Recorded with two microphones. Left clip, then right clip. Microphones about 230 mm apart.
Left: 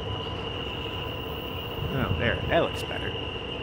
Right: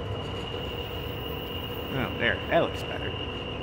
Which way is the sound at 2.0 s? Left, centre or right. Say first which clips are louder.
Right 1 dB; centre.